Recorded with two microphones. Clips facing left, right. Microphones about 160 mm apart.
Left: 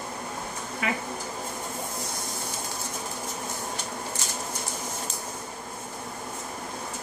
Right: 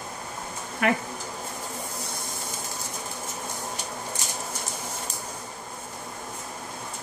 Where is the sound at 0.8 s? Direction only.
60° right (ahead or behind).